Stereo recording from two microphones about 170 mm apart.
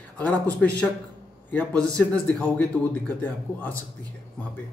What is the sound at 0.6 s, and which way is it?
Speech, 5° left (ahead or behind).